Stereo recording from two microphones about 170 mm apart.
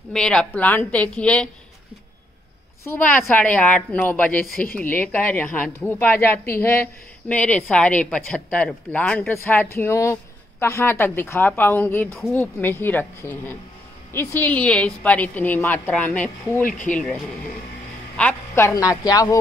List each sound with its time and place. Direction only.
0.1 s a woman's voice: 5° left (ahead or behind)
3.3 s a woman's voice: 10° left (ahead or behind)
16.6 s speech: 50° left (ahead or behind)
18.1 s a woman's voice: 10° left (ahead or behind)